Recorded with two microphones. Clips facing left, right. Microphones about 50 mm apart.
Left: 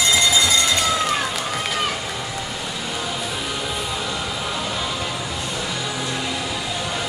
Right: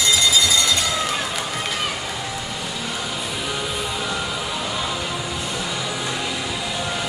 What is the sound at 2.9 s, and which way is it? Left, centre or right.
Music, centre.